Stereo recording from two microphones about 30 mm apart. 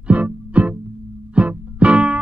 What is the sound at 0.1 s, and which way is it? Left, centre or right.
Music, right.